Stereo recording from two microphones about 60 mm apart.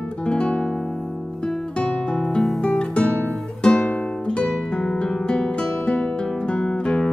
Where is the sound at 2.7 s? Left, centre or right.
Left.